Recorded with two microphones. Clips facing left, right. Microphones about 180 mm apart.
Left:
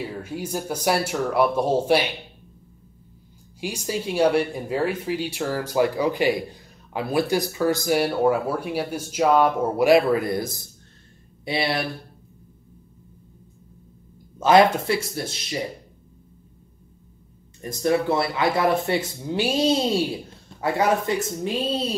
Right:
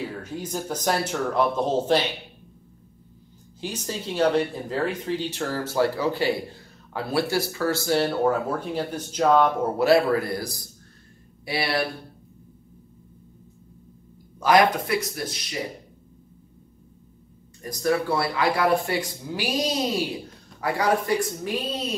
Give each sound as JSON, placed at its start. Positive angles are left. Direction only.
{"t": 0.2, "sound": "speech", "side_deg": 10}
{"t": 3.6, "sound": "speech", "side_deg": 10}
{"t": 14.4, "sound": "speech", "side_deg": 25}
{"t": 17.6, "sound": "speech", "side_deg": 25}